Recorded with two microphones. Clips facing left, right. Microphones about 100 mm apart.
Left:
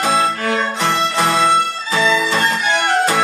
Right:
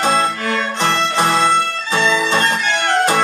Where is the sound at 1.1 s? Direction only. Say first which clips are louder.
Right 1 dB; 25° right (ahead or behind).